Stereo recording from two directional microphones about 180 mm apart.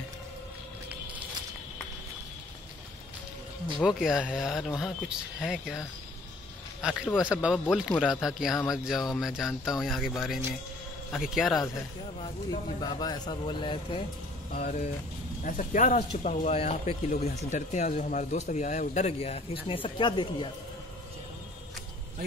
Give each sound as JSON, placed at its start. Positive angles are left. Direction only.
{"t": 3.7, "sound": "speech", "side_deg": -5}
{"t": 12.2, "sound": "speech", "side_deg": 25}